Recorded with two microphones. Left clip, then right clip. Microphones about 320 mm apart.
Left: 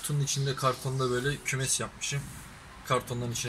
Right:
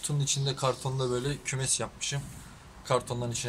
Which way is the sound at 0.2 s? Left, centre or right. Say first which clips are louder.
Left 1 dB; right.